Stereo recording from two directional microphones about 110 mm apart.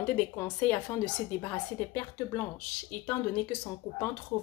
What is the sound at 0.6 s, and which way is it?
Speech, 20° left (ahead or behind).